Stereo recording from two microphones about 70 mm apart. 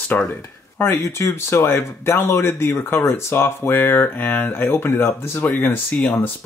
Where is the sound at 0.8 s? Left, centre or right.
Left.